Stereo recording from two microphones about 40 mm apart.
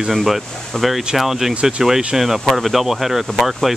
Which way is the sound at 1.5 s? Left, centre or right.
Right.